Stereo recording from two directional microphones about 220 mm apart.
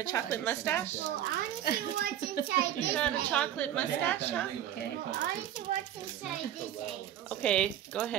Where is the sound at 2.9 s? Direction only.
5° left (ahead or behind).